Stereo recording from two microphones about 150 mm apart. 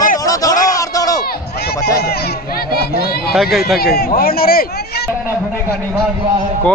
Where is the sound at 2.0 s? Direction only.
90° left.